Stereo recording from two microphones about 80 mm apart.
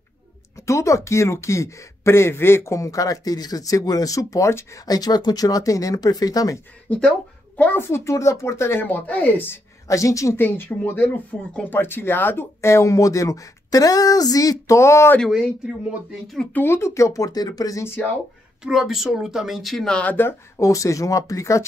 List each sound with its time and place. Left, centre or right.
0.6 s speech: left
6.9 s a woman's voice: centre
7.8 s speech: left
8.8 s speech: left
9.8 s speech: left
10.3 s speech: left
15.3 s speech: centre
16.5 s speech: left
18.6 s speech: centre
20.2 s speech: left
20.5 s speech: left